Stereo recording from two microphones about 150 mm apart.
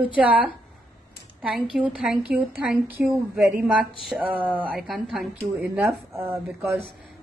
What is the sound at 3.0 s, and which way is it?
Speech, 15° right (ahead or behind).